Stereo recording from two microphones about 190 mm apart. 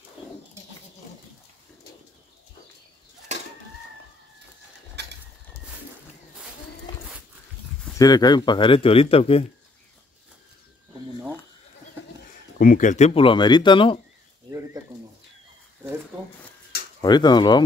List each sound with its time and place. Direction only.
3.3 s chicken: 35° right (ahead or behind)
5.0 s a sound: 65° right (ahead or behind)
8.0 s speech: 20° left (ahead or behind)
12.5 s speech: 45° left (ahead or behind); by 13.9 s 25° left (ahead or behind)
16.1 s cash register: 25° right (ahead or behind)
17.0 s speech: 20° left (ahead or behind)